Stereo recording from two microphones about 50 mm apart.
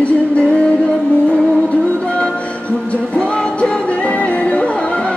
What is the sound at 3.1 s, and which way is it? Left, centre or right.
Music, left.